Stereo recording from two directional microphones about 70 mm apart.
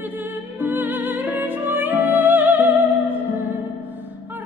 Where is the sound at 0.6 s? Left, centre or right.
Right.